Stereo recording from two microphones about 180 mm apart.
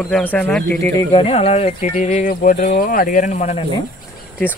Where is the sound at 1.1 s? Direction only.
30° left (ahead or behind).